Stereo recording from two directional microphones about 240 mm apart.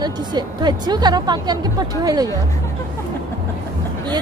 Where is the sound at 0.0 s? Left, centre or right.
Centre.